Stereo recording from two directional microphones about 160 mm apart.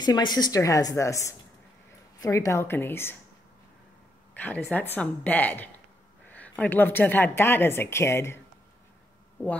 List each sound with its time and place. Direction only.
0.0 s a woman's voice: 25° left (ahead or behind)
4.4 s a woman's voice: 10° left (ahead or behind)